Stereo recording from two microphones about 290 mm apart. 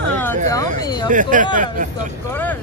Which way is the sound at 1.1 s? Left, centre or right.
Right.